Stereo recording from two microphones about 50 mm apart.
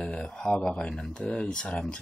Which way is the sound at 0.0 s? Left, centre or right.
Centre.